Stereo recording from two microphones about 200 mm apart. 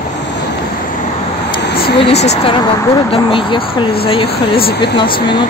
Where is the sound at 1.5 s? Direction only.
60° left (ahead or behind).